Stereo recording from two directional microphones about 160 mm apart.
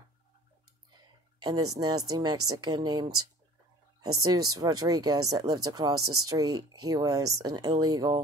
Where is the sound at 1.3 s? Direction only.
25° right (ahead or behind).